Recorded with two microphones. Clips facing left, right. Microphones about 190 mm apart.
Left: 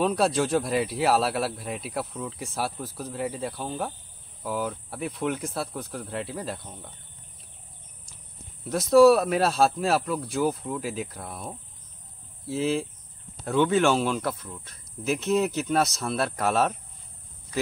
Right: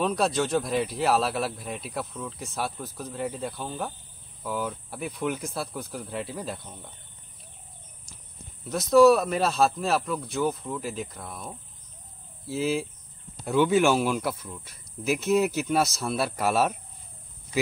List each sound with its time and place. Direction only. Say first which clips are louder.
0.0 s speech: left 2 dB; 5° left (ahead or behind)
8.6 s speech: left 1 dB; 5° left (ahead or behind)